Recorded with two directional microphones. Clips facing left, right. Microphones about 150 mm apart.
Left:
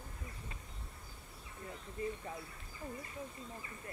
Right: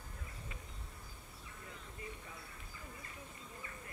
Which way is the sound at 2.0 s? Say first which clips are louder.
Left 11 dB; 35° left (ahead or behind).